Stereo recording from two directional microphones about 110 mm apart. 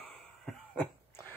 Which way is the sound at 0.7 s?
20° left (ahead or behind).